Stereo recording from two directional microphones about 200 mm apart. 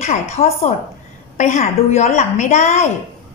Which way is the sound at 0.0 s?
35° left (ahead or behind).